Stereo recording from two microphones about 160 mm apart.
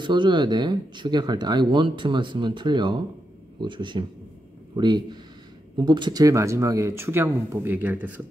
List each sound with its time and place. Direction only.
0.0 s speech: 30° right (ahead or behind); by 8.2 s 10° right (ahead or behind)